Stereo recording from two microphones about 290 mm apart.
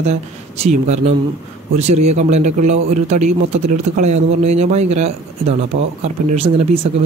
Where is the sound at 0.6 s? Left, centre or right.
Right.